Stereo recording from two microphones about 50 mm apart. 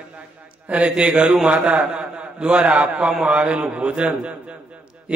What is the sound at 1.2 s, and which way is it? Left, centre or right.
Speech, centre.